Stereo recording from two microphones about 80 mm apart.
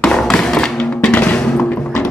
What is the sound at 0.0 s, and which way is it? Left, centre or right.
Music, centre.